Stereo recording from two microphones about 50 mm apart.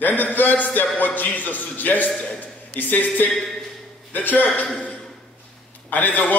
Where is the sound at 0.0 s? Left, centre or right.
Left.